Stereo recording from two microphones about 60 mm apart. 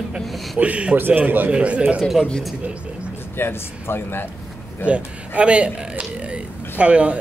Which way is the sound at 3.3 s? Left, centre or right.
Left.